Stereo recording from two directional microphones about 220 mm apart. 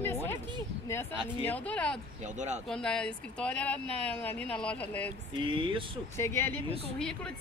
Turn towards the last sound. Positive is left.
turn(degrees=5)  # may be behind; listen again after turning